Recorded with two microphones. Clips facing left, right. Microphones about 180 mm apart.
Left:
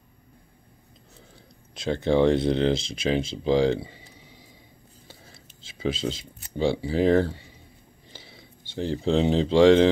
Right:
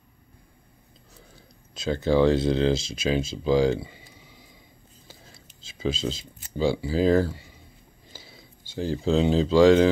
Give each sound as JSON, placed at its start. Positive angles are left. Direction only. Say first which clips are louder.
{"t": 1.8, "sound": "speech", "louder": "even", "side_deg": 25}
{"t": 5.6, "sound": "a sound", "louder": "even", "side_deg": 30}
{"t": 6.1, "sound": "speech", "louder": "even", "side_deg": 25}